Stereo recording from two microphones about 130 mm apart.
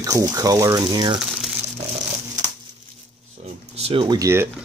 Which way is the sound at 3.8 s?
50° right (ahead or behind).